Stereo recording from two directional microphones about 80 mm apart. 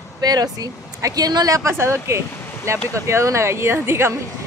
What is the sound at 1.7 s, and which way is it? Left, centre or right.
Speech, right.